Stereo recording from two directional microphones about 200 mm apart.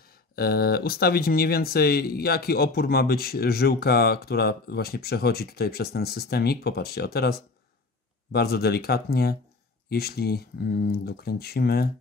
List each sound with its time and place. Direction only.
0.0 s speech: 50° left (ahead or behind)